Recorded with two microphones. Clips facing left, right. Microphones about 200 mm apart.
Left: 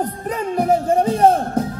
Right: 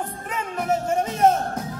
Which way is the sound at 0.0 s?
35° left (ahead or behind).